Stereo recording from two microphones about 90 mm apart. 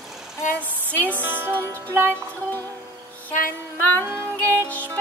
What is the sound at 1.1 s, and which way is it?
Music, 20° right (ahead or behind).